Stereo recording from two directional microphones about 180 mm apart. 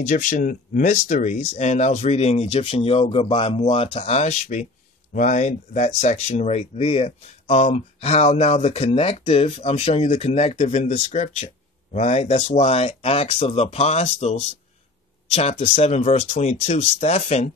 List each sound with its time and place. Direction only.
0.0 s speech: 45° left (ahead or behind)